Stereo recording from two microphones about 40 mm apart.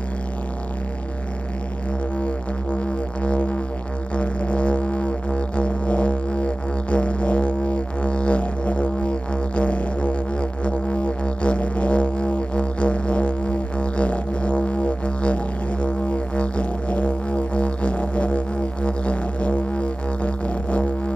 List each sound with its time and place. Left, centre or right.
2.7 s music: left